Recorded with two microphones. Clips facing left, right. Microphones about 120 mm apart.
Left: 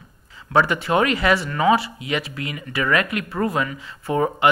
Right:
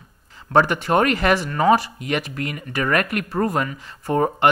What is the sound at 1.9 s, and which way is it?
Speech, 50° right (ahead or behind).